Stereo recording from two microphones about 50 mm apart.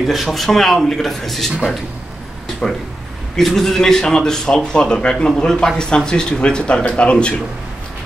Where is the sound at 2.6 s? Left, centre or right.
Centre.